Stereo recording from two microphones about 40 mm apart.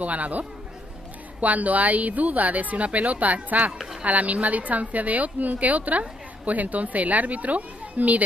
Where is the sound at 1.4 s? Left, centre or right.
Right.